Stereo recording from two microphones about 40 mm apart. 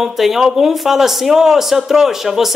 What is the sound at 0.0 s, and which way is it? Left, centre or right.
Speech, centre.